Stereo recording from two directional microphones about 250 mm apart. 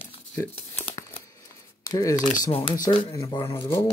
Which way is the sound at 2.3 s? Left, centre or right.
Left.